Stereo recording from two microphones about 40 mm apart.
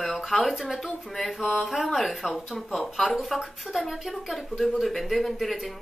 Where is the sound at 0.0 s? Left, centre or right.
Centre.